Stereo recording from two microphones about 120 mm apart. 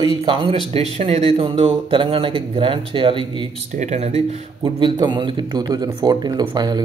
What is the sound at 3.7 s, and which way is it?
Speech, 75° right (ahead or behind).